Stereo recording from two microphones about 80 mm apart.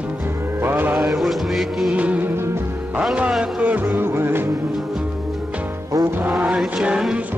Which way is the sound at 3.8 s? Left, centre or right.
Right.